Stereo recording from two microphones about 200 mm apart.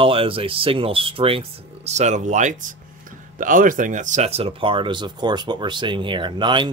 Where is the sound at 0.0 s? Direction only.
25° right (ahead or behind).